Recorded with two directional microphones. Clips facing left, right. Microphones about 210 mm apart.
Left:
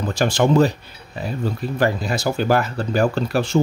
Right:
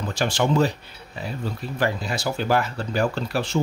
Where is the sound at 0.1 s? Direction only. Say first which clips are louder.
Left 5 dB; 45° left (ahead or behind).